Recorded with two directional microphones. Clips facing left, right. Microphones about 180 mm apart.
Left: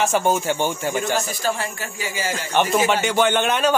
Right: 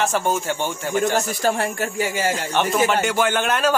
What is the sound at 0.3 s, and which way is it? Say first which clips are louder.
Speech: left 2 dB; centre (ahead or behind).